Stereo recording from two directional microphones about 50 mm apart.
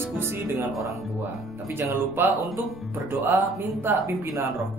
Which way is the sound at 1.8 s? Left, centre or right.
Right.